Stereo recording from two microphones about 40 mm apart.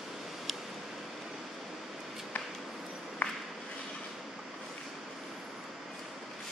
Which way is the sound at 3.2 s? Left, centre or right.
Left.